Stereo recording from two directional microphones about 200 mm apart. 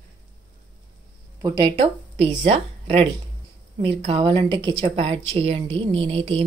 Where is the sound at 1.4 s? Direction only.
25° right (ahead or behind).